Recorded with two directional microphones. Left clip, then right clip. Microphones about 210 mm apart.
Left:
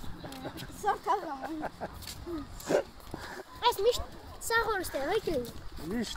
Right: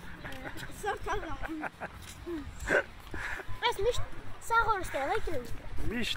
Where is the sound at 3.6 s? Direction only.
55° left (ahead or behind).